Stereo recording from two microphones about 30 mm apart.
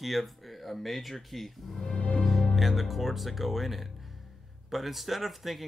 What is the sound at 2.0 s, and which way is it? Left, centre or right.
Music, left.